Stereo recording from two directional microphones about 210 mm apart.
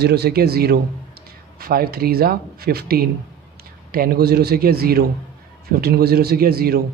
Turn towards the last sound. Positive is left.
turn(degrees=-45)  # may be behind; listen again after turning